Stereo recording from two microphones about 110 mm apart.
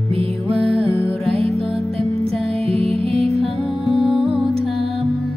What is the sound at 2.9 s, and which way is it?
Music, 60° right (ahead or behind).